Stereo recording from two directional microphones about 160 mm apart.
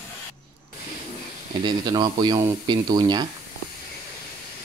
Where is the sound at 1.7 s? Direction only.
25° right (ahead or behind).